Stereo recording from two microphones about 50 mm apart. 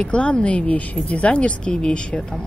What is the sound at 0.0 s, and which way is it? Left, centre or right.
Speech, left.